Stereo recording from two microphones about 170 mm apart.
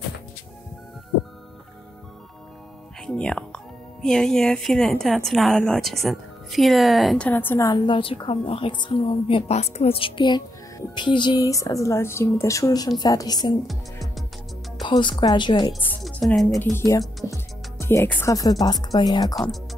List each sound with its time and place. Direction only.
3.1 s a woman's voice: 5° left (ahead or behind); by 13.6 s 25° left (ahead or behind)
14.8 s a woman's voice: 30° left (ahead or behind)
16.0 s a woman's voice: 5° left (ahead or behind)
16.7 s a woman's voice: 20° left (ahead or behind)